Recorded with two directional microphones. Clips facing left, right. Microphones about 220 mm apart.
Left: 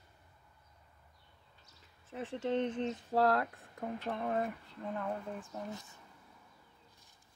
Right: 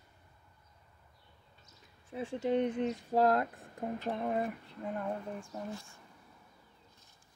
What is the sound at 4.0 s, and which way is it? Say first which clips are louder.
Speech: right 2 dB; 15° right (ahead or behind).